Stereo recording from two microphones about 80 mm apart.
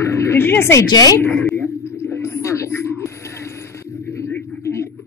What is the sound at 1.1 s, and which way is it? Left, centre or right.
Speech, left.